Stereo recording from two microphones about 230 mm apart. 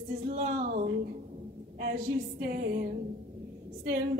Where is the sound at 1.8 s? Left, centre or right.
Right.